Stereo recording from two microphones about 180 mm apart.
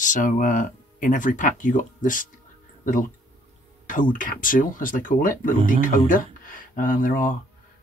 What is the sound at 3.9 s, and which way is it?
Speech, 45° left (ahead or behind).